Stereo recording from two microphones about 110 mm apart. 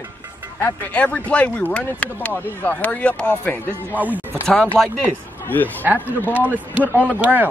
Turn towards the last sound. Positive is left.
turn(degrees=-15)  # may be behind; listen again after turning